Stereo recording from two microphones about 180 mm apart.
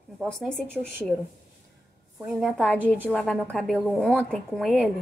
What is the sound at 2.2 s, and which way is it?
A woman's voice, centre (ahead or behind).